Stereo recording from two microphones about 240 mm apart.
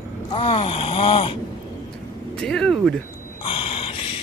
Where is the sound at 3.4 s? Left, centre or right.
Left.